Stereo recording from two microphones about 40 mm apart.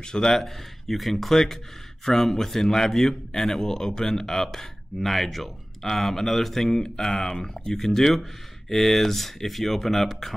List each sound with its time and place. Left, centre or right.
0.0 s speech: centre
0.3 s a man's voice: centre